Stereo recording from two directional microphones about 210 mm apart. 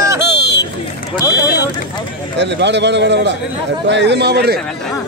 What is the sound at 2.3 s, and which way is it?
A man's voice, 55° right (ahead or behind).